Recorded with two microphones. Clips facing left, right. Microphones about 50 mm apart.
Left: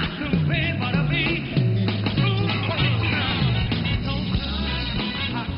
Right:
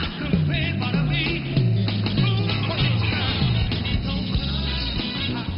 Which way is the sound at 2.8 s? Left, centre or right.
Centre.